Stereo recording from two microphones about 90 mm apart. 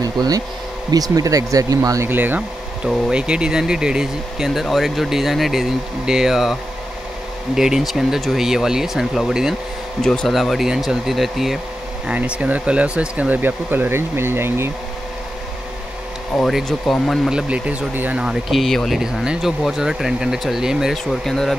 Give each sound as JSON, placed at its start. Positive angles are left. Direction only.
{"t": 0.0, "sound": "speech", "side_deg": -45}
{"t": 2.0, "sound": "speech", "side_deg": -20}
{"t": 2.8, "sound": "speech", "side_deg": -10}
{"t": 12.1, "sound": "speech", "side_deg": -15}
{"t": 16.3, "sound": "speech", "side_deg": 0}
{"t": 17.3, "sound": "speech", "side_deg": -10}
{"t": 18.2, "sound": "speech", "side_deg": -5}